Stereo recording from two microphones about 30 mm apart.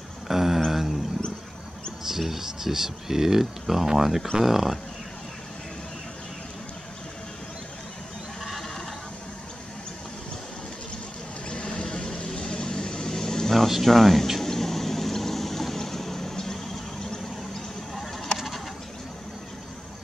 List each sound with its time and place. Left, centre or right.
0.3 s a sound: centre
0.7 s roaring cats: centre
2.0 s speech: centre
11.5 s vehicle: left; by 13.6 s centre
13.8 s speech: centre
14.4 s boat: centre